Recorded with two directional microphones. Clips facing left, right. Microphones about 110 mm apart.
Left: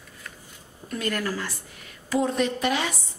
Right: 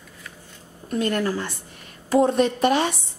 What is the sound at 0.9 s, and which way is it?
Speech, 25° right (ahead or behind).